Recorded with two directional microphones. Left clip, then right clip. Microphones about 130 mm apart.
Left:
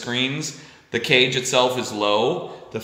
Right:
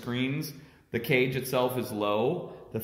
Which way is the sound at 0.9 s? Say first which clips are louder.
Left 9 dB; centre (ahead or behind).